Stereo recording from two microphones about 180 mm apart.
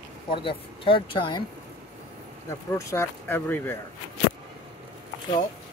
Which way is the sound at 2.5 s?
15° left (ahead or behind).